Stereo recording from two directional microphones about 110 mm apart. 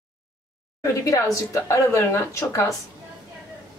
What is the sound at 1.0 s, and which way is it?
A woman's voice, 30° left (ahead or behind).